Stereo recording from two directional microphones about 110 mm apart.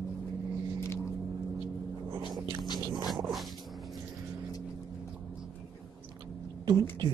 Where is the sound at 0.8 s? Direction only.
25° left (ahead or behind).